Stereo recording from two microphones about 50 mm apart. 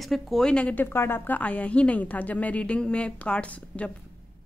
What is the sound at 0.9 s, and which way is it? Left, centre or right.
Speech, left.